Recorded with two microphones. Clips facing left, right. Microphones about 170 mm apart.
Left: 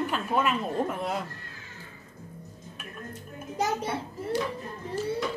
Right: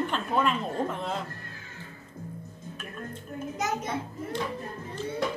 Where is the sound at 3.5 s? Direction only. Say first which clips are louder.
Left 3 dB; 30° left (ahead or behind).